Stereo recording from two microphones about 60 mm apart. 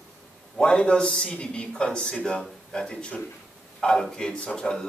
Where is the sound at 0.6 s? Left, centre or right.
Centre.